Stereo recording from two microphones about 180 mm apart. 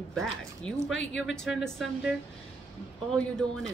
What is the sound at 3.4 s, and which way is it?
Speech, 5° left (ahead or behind).